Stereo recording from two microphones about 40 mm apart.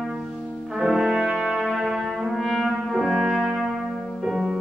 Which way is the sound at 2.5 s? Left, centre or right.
Centre.